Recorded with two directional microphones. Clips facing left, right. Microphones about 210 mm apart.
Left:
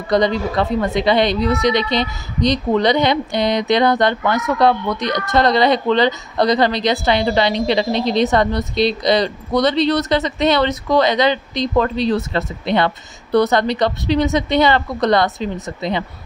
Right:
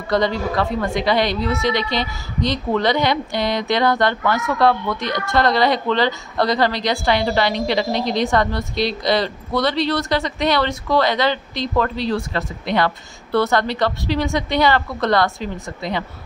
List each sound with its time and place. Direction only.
0.1 s a woman's voice: 20° left (ahead or behind)